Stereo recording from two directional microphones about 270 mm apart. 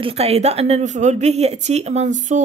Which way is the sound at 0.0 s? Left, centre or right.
Right.